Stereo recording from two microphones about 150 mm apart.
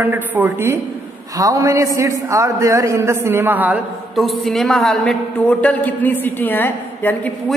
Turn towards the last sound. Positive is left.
turn(degrees=10)  # may be behind; listen again after turning